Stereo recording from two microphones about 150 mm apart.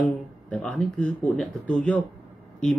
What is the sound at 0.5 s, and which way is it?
Speech, 10° left (ahead or behind).